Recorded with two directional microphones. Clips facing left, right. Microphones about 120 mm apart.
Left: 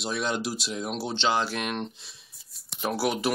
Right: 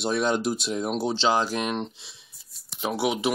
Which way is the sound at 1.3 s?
40° right (ahead or behind).